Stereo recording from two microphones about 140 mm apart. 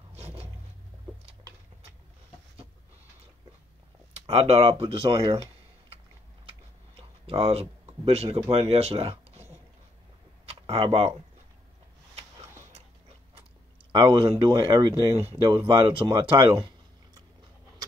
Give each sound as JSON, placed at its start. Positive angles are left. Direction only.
{"t": 0.1, "sound": "vehicle", "side_deg": -45}
{"t": 4.1, "sound": "speech", "side_deg": -50}
{"t": 7.0, "sound": "a sound", "side_deg": -45}
{"t": 8.5, "sound": "speech", "side_deg": -45}
{"t": 10.4, "sound": "a sound", "side_deg": -45}
{"t": 13.9, "sound": "speech", "side_deg": -35}